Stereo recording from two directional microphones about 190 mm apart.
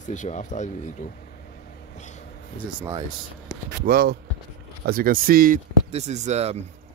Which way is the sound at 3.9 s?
55° right (ahead or behind).